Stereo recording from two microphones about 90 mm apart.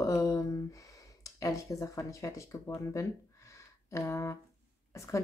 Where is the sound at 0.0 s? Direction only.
35° left (ahead or behind).